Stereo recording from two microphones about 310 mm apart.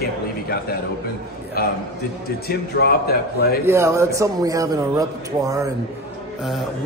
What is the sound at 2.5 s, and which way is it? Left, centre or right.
A man's voice, left.